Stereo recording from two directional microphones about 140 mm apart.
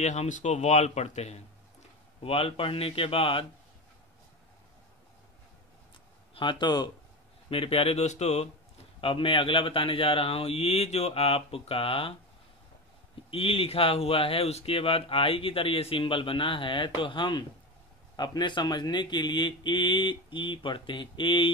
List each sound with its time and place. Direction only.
0.0 s speech: 55° left (ahead or behind)
6.3 s speech: 35° left (ahead or behind)
7.4 s speech: 40° left (ahead or behind)
9.0 s speech: 40° left (ahead or behind)
13.3 s speech: 40° left (ahead or behind)